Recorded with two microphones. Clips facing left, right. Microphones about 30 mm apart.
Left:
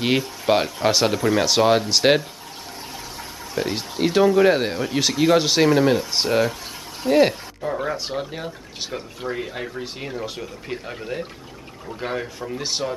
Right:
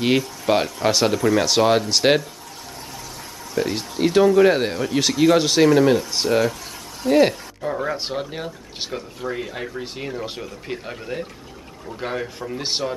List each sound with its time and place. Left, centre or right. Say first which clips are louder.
0.5 s speech: even; centre
3.5 s speech: right 2 dB; centre
8.8 s speech: right 1 dB; centre
9.3 s speech: even; centre